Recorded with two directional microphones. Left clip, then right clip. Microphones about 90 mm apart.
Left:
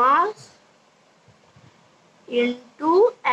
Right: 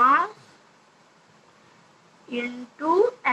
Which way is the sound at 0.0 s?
25° left (ahead or behind).